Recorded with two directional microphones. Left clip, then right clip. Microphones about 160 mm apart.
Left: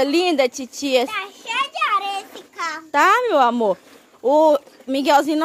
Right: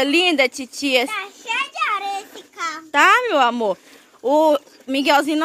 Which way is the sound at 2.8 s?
5° left (ahead or behind).